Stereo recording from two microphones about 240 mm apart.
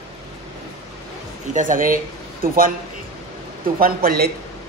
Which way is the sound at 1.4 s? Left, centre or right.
Right.